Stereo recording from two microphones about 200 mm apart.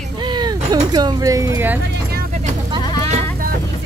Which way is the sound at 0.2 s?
20° right (ahead or behind).